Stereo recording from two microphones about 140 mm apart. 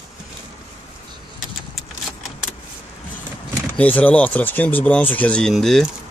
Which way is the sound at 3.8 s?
10° left (ahead or behind).